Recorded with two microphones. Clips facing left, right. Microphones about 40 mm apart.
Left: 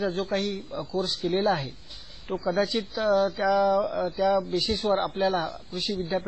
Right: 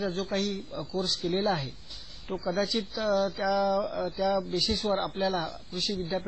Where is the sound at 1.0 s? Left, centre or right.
Centre.